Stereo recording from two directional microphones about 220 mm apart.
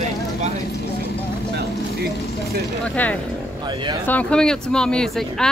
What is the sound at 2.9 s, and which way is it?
Speech, 5° left (ahead or behind).